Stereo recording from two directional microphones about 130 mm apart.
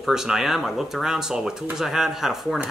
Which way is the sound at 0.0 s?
5° right (ahead or behind).